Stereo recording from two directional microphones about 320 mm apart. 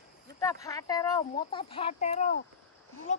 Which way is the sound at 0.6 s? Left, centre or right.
Centre.